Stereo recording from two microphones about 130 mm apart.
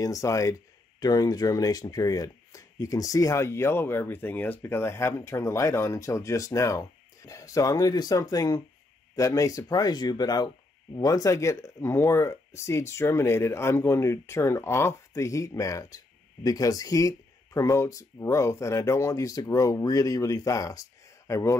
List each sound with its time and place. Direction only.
0.0 s speech: 25° left (ahead or behind)